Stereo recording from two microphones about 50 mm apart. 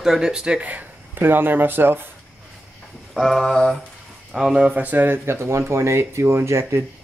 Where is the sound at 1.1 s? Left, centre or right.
Right.